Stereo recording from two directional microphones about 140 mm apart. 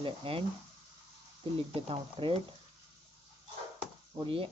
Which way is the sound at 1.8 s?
40° right (ahead or behind).